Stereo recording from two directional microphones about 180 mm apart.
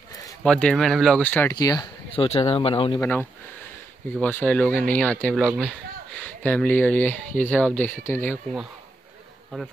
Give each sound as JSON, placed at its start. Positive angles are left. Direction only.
{"t": 0.4, "sound": "speech", "side_deg": 5}
{"t": 1.5, "sound": "speech", "side_deg": 20}
{"t": 3.0, "sound": "speech", "side_deg": 10}
{"t": 9.5, "sound": "speech", "side_deg": 0}